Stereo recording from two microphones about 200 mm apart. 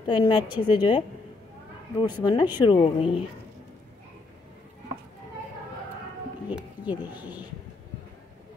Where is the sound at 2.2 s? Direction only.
20° left (ahead or behind).